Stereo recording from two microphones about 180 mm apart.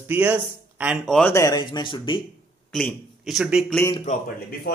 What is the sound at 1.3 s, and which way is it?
Speech, 20° left (ahead or behind).